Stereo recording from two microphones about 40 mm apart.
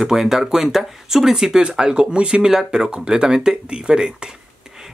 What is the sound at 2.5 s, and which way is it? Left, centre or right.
Speech, centre.